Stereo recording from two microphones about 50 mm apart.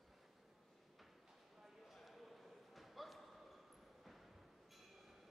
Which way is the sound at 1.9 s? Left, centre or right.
Centre.